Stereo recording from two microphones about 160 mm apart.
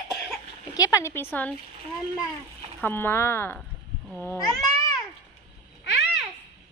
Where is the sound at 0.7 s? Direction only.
20° left (ahead or behind).